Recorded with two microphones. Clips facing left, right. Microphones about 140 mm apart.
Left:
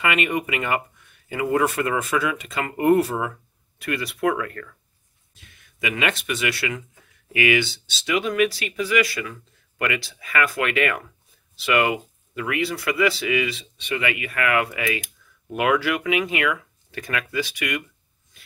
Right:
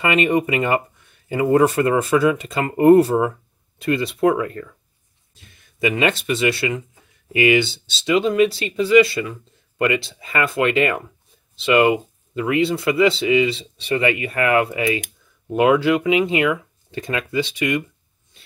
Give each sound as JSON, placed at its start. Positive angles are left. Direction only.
{"t": 0.0, "sound": "speech", "side_deg": -30}